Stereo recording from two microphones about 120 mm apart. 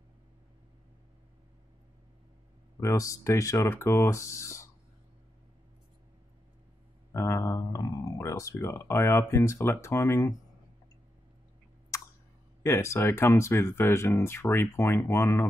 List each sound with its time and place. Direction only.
2.8 s speech: 25° left (ahead or behind)
7.2 s speech: 25° left (ahead or behind)
11.9 s a sound: 25° left (ahead or behind)
12.6 s speech: 20° left (ahead or behind)